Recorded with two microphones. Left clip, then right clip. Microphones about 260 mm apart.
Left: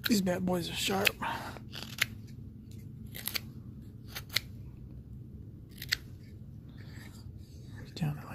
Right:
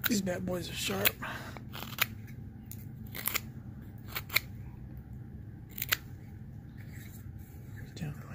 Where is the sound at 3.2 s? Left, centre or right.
Centre.